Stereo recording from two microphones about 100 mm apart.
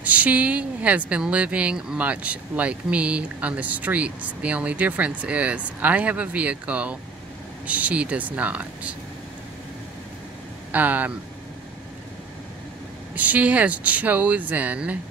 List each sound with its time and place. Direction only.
0.0 s speech: 15° right (ahead or behind)
10.7 s speech: 15° right (ahead or behind)
13.1 s speech: 15° right (ahead or behind)